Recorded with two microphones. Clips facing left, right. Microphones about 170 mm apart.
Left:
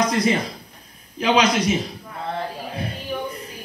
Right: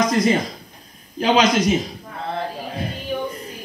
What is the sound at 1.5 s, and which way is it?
Speech, 10° left (ahead or behind).